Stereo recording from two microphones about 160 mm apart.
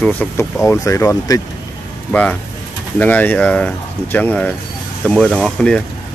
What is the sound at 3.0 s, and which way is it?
Speech, 10° left (ahead or behind).